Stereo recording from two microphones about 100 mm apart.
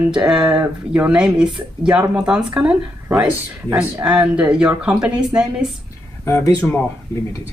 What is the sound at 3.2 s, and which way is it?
Speech, 20° right (ahead or behind).